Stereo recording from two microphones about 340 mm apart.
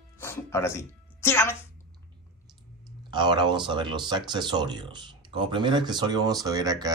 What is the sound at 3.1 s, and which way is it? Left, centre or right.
Speech, centre.